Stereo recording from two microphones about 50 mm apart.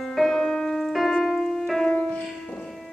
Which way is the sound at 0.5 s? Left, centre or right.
Centre.